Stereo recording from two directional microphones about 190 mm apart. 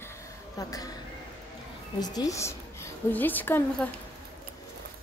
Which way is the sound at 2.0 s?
20° left (ahead or behind).